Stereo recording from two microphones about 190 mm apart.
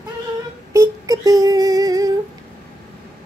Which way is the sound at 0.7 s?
20° right (ahead or behind).